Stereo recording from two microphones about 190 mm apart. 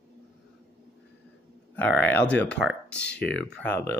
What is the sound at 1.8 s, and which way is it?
Speech, 10° left (ahead or behind).